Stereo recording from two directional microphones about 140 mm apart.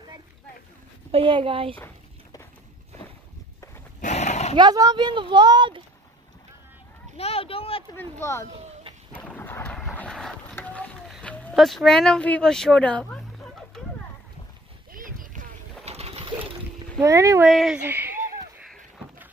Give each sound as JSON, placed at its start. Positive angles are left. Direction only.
{"t": 1.1, "sound": "a woman's voice", "side_deg": -40}
{"t": 4.0, "sound": "horse", "side_deg": 55}
{"t": 4.6, "sound": "a woman's voice", "side_deg": -25}
{"t": 7.2, "sound": "speech", "side_deg": 45}
{"t": 7.9, "sound": "speech", "side_deg": 15}
{"t": 9.2, "sound": "thunder", "side_deg": 15}
{"t": 9.8, "sound": "a sound", "side_deg": 5}
{"t": 11.5, "sound": "speech", "side_deg": 0}
{"t": 14.9, "sound": "boat", "side_deg": -80}
{"t": 15.8, "sound": "pigeon", "side_deg": -50}
{"t": 17.0, "sound": "speech", "side_deg": -20}
{"t": 17.5, "sound": "speech", "side_deg": 0}
{"t": 17.8, "sound": "speech", "side_deg": -15}